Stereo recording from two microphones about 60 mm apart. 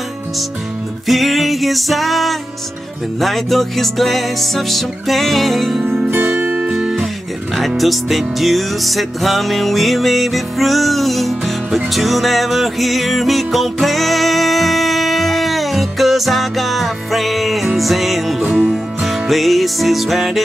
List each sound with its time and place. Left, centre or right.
1.0 s music: centre
6.0 s music: right
6.7 s music: centre
7.5 s music: centre